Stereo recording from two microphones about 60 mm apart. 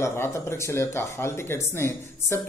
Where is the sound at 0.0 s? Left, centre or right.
Left.